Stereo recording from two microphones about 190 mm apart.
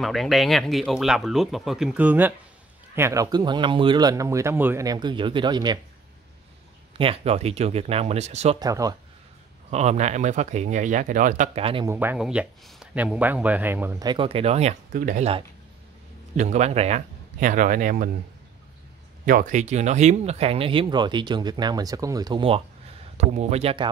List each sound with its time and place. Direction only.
0.0 s speech: centre (ahead or behind); by 5.8 s 20° right (ahead or behind)
7.0 s speech: 30° right (ahead or behind)
8.5 s speech: 20° right (ahead or behind)
9.7 s speech: 35° right (ahead or behind)
11.8 s speech: 10° right (ahead or behind)
14.0 s speech: 30° right (ahead or behind); by 15.2 s 45° right (ahead or behind)
16.3 s speech: 35° right (ahead or behind)
19.2 s speech: 45° right (ahead or behind)